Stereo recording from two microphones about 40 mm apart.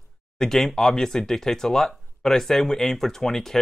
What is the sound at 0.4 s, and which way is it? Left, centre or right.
Speech, centre.